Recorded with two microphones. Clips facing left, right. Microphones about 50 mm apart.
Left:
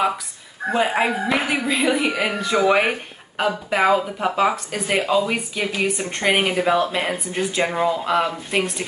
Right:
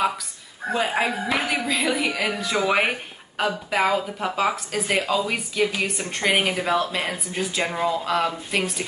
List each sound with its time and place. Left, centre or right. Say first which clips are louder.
0.7 s a woman's voice: left 3 dB; centre
7.7 s speech: left 2 dB; centre